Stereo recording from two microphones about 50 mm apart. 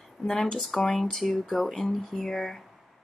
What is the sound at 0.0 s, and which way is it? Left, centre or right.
Speech, centre.